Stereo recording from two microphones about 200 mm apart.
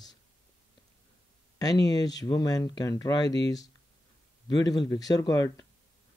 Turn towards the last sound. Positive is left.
turn(degrees=15)  # may be behind; listen again after turning